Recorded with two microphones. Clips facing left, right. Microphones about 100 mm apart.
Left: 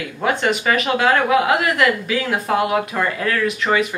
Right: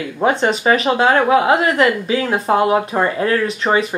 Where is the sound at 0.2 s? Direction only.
25° right (ahead or behind).